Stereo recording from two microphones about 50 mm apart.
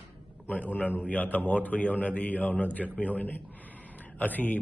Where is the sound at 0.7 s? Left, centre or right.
Left.